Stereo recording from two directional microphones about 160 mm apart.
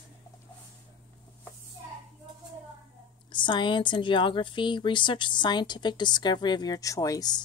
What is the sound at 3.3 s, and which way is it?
A woman's voice, 30° left (ahead or behind).